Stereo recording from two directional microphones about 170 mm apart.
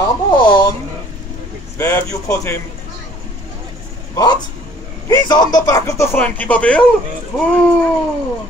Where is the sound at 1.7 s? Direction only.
15° left (ahead or behind).